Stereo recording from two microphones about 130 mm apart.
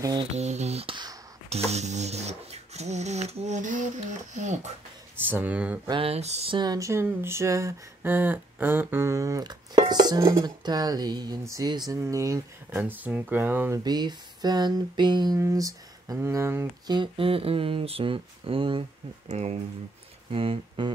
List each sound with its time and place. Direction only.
0.2 s speech: 55° right (ahead or behind)
5.3 s speech: 10° right (ahead or behind)
5.9 s speech: 45° right (ahead or behind)
6.5 s speech: 30° right (ahead or behind)
10.4 s a sound: 30° right (ahead or behind)
12.7 s speech: 15° right (ahead or behind)
13.8 s a sound: 30° right (ahead or behind)
16.8 s speech: 35° right (ahead or behind)
19.2 s speech: 60° right (ahead or behind)
20.2 s speech: 45° right (ahead or behind)